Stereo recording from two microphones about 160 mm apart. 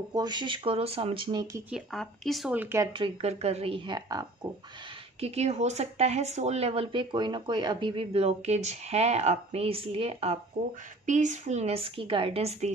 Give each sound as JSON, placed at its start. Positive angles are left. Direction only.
{"t": 0.1, "sound": "speech", "side_deg": -25}
{"t": 1.7, "sound": "speech", "side_deg": 0}
{"t": 2.5, "sound": "speech", "side_deg": -15}
{"t": 2.9, "sound": "speech", "side_deg": -35}
{"t": 5.2, "sound": "speech", "side_deg": -40}